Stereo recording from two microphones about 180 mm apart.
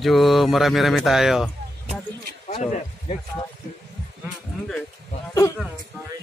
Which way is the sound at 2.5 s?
35° left (ahead or behind).